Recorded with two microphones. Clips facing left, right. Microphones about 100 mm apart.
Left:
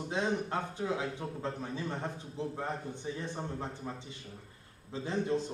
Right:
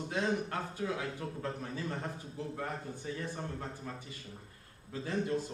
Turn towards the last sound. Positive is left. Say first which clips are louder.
# left 2 dB
turn(degrees=20)  # may be behind; listen again after turning